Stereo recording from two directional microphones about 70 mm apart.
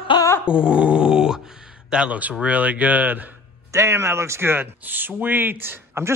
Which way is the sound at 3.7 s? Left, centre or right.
Right.